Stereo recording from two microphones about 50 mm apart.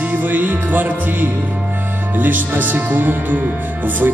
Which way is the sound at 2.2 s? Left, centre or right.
Right.